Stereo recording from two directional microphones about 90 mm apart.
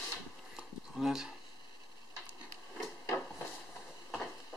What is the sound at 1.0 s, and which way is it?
Speech, 5° right (ahead or behind).